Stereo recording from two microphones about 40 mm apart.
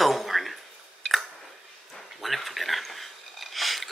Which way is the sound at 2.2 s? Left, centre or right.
Centre.